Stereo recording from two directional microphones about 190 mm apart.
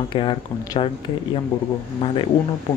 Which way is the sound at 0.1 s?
25° left (ahead or behind).